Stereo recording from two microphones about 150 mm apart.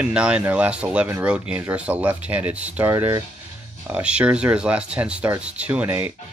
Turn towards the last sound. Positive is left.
turn(degrees=-15)  # may be behind; listen again after turning